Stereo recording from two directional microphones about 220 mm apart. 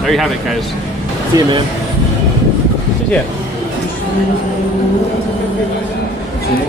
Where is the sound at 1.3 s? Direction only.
15° right (ahead or behind).